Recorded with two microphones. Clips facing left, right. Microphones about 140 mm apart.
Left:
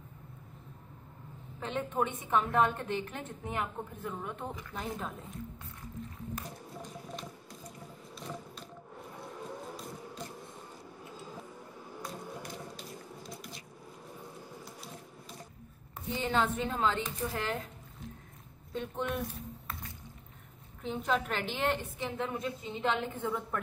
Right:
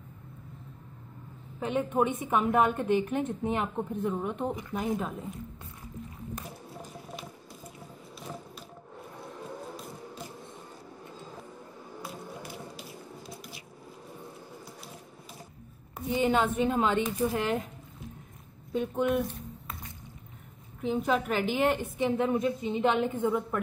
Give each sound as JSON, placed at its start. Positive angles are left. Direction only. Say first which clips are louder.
{"t": 1.6, "sound": "a woman's voice", "louder": "right 6 dB", "side_deg": -10}
{"t": 6.8, "sound": "squish", "louder": "even", "side_deg": -5}
{"t": 9.7, "sound": "music", "louder": "right 1 dB", "side_deg": -5}
{"t": 12.0, "sound": "squish", "louder": "right 1 dB", "side_deg": -5}
{"t": 16.1, "sound": "a woman's voice", "louder": "right 5 dB", "side_deg": -15}
{"t": 18.7, "sound": "a woman's voice", "louder": "right 8 dB", "side_deg": -10}
{"t": 20.8, "sound": "a woman's voice", "louder": "right 5 dB", "side_deg": -5}